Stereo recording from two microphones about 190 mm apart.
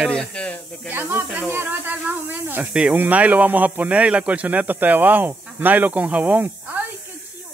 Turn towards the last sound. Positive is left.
turn(degrees=-10)  # may be behind; listen again after turning